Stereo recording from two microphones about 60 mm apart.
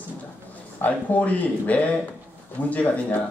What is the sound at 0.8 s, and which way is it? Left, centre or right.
Speech, left.